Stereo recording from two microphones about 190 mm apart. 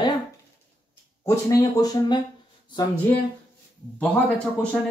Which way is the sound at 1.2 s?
15° left (ahead or behind).